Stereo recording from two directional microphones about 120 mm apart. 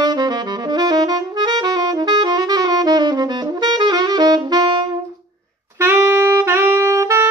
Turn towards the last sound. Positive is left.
turn(degrees=-25)  # may be behind; listen again after turning